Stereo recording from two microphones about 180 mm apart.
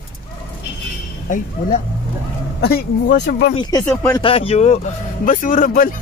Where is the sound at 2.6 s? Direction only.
60° left (ahead or behind).